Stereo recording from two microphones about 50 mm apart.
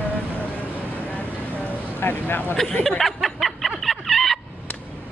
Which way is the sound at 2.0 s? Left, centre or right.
Left.